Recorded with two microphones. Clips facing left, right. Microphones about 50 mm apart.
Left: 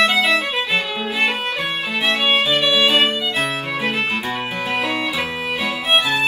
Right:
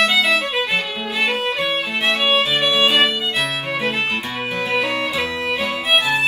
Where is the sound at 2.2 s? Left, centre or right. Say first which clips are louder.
Left 1 dB; left.